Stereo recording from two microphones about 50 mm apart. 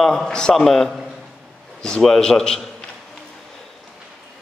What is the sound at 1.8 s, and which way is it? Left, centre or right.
Speech, centre.